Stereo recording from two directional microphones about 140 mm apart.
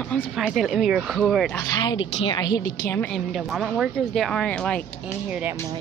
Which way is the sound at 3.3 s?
Centre (ahead or behind).